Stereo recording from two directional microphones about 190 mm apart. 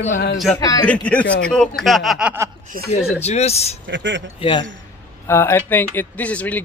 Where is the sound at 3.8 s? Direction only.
70° right (ahead or behind).